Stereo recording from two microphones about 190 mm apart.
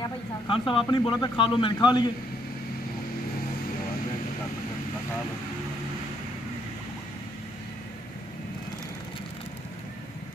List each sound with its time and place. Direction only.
0.5 s a man's voice: 25° left (ahead or behind)